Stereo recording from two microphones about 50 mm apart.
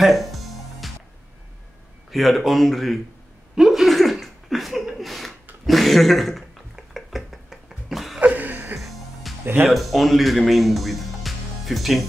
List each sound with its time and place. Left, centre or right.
0.0 s music: centre
2.0 s speech: centre
3.5 s a sound: centre
8.2 s a sound: right
8.7 s music: centre
9.7 s speech: centre